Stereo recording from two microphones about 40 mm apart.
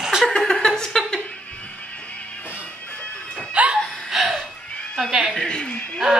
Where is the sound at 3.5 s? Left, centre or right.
Right.